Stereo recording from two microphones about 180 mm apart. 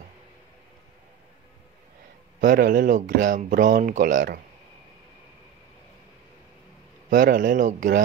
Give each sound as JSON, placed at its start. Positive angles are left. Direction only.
{"t": 2.4, "sound": "speech", "side_deg": -50}
{"t": 7.1, "sound": "speech", "side_deg": -50}